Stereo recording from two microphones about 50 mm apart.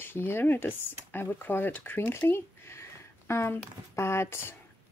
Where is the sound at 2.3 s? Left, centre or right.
Left.